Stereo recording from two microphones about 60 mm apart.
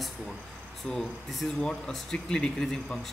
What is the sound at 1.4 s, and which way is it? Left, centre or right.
Speech, left.